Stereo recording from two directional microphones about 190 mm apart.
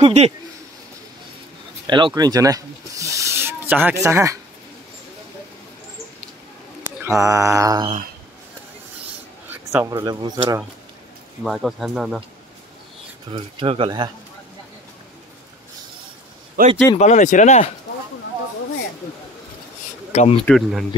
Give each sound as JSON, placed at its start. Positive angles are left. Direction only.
{"t": 0.0, "sound": "speech", "side_deg": -35}
{"t": 1.9, "sound": "speech", "side_deg": -25}
{"t": 7.1, "sound": "mantra", "side_deg": -15}
{"t": 9.5, "sound": "speech", "side_deg": -10}
{"t": 11.4, "sound": "speech", "side_deg": 0}
{"t": 13.3, "sound": "speech", "side_deg": -30}
{"t": 16.6, "sound": "speech", "side_deg": -50}
{"t": 16.9, "sound": "speech", "side_deg": 35}
{"t": 20.1, "sound": "speech", "side_deg": 35}
{"t": 20.4, "sound": "speech", "side_deg": 0}